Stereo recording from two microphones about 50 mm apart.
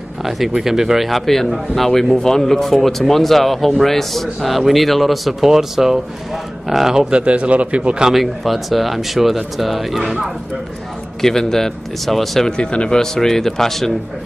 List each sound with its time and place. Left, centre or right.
0.2 s speech: centre; by 8.1 s right
8.1 s speech: centre
11.1 s speech: centre
12.5 s speech: centre
13.0 s speech: centre